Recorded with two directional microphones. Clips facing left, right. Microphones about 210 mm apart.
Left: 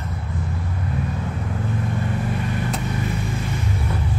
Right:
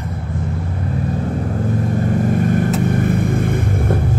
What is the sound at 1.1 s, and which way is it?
Vehicle, 40° right (ahead or behind).